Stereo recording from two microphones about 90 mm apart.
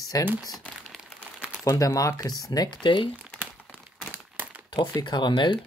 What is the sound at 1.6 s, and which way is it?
Speech, 40° left (ahead or behind).